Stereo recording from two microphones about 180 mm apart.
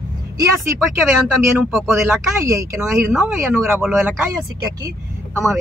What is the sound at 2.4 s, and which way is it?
Speech, 15° right (ahead or behind).